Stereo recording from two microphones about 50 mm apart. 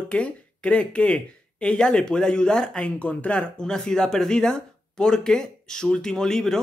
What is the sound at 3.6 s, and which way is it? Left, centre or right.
Speech, centre.